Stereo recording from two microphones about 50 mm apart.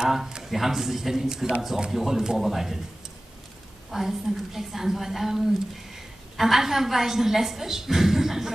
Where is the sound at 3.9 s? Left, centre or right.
Centre.